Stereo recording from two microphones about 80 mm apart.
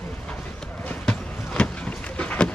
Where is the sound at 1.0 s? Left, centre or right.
Centre.